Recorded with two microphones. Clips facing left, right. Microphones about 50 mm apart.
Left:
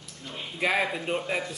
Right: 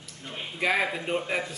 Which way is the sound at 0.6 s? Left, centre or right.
Centre.